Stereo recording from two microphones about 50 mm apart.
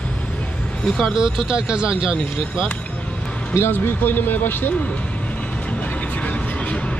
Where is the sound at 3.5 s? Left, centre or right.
Left.